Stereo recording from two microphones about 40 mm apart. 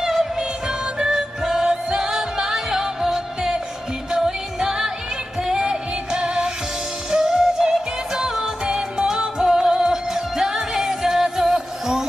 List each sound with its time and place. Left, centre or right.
0.0 s music: centre
0.4 s music: centre